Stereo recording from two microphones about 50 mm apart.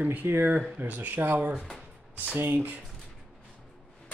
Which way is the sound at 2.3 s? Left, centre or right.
Right.